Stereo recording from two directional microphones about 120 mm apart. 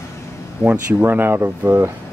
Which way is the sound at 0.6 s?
15° right (ahead or behind).